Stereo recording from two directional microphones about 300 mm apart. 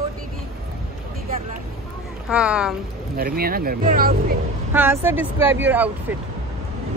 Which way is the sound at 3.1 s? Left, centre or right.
Right.